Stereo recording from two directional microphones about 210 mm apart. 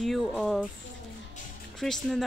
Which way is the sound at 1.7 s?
Centre (ahead or behind).